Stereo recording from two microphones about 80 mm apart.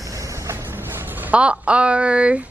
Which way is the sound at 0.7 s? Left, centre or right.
Right.